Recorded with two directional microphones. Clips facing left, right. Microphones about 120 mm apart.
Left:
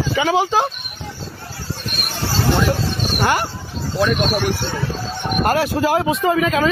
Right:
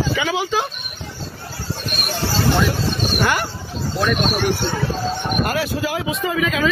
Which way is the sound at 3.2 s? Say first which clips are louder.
Left 3 dB; 30° left (ahead or behind).